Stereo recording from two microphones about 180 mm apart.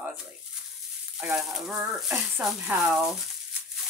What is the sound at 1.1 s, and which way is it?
Speech, 5° right (ahead or behind).